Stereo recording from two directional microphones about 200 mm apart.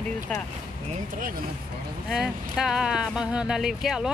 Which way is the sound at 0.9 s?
40° right (ahead or behind).